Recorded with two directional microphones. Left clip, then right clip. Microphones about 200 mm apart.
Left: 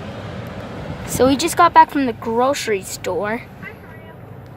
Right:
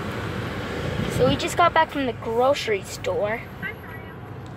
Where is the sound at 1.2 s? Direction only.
25° left (ahead or behind).